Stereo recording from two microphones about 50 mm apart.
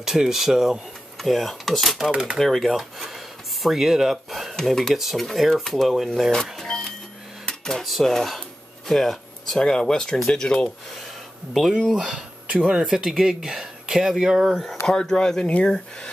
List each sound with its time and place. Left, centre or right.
0.0 s speech: centre
2.0 s speech: centre
2.3 s speech: centre
6.2 s speech: centre
6.7 s music: centre
7.4 s dishes: centre
7.8 s speech: centre
8.1 s a sound: centre
9.7 s speech: centre
11.7 s speech: centre
14.9 s speech: centre